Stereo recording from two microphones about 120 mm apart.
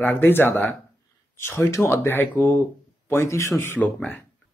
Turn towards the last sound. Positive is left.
turn(degrees=10)  # may be behind; listen again after turning